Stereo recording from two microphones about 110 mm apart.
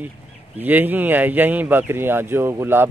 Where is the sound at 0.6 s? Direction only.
15° right (ahead or behind).